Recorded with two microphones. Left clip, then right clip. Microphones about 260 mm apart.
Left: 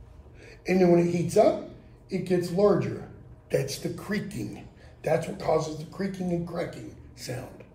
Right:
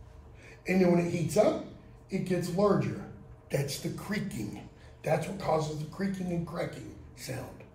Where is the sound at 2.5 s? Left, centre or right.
Centre.